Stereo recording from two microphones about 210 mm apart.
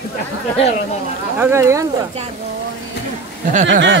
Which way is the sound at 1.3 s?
10° right (ahead or behind).